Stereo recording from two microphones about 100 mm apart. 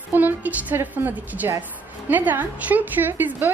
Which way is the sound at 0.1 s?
15° right (ahead or behind).